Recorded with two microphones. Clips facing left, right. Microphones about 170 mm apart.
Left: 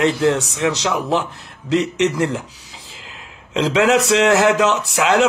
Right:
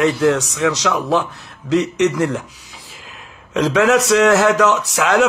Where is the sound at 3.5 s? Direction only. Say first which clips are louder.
Right 1 dB; 20° left (ahead or behind).